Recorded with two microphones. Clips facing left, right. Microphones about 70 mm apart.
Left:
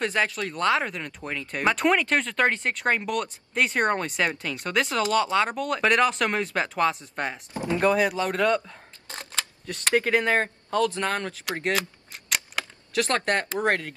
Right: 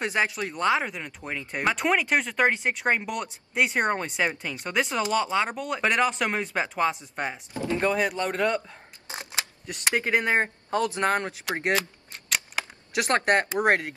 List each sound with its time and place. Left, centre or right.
0.0 s speech: centre
11.7 s a sound: centre
12.9 s speech: centre